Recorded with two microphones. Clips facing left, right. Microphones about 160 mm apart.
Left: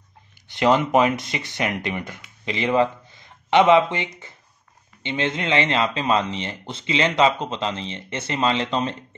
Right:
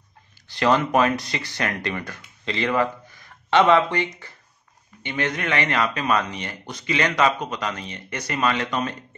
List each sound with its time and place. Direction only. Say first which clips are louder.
0.3 s speech: left 2 dB; 20° left (ahead or behind)